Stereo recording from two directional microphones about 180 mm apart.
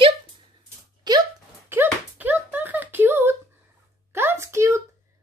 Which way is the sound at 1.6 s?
10° right (ahead or behind).